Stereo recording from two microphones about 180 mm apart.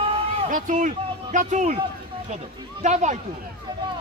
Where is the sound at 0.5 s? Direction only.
45° right (ahead or behind).